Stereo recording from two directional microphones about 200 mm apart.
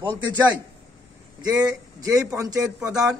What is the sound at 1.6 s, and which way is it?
Speech, 20° right (ahead or behind).